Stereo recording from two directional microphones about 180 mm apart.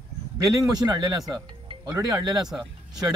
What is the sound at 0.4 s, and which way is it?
Speech, 20° right (ahead or behind).